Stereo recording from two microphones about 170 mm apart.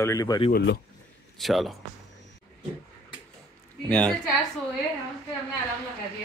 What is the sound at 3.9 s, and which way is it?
Speech, 5° left (ahead or behind).